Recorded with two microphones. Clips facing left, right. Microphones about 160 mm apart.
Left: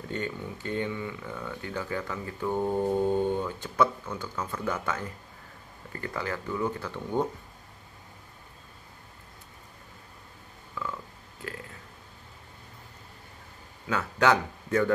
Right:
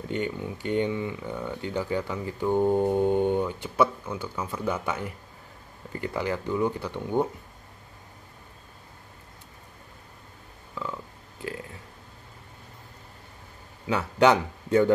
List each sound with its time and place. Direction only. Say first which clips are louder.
0.1 s speech: right 4 dB; 15° right (ahead or behind)
10.7 s a sound: right 2 dB; 20° right (ahead or behind)
11.4 s burping: right 5 dB; 20° right (ahead or behind)
13.8 s speech: right 4 dB; 20° right (ahead or behind)